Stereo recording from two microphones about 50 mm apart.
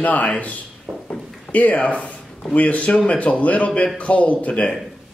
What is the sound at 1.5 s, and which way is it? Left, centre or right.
Speech, left.